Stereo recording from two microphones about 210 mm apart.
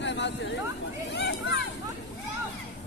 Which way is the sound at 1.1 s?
55° left (ahead or behind).